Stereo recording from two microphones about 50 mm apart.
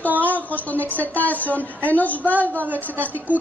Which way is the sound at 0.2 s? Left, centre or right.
Left.